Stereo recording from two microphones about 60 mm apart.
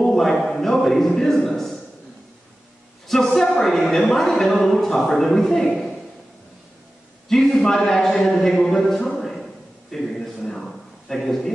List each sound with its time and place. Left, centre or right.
0.0 s a man's voice: centre
3.1 s a man's voice: centre
7.2 s speech: centre